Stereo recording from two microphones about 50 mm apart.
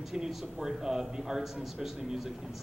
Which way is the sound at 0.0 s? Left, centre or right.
Centre.